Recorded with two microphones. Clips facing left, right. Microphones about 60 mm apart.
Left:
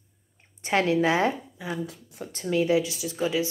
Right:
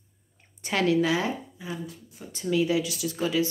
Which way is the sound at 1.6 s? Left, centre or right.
Left.